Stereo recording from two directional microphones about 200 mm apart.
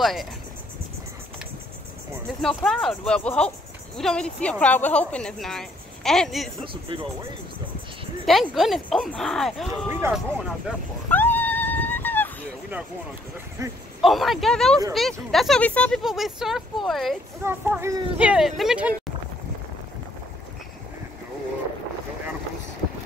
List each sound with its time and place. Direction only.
0.0 s speech: centre (ahead or behind)
2.4 s speech: centre (ahead or behind)
6.6 s speech: 25° right (ahead or behind)
8.3 s speech: centre (ahead or behind)
9.8 s speech: 10° right (ahead or behind)
11.1 s dog: 10° left (ahead or behind)
13.6 s speech: 15° right (ahead or behind)
14.0 s speech: centre (ahead or behind)
17.4 s speech: 10° right (ahead or behind)